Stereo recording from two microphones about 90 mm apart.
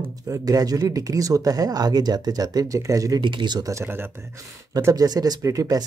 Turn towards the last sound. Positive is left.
turn(degrees=-40)  # may be behind; listen again after turning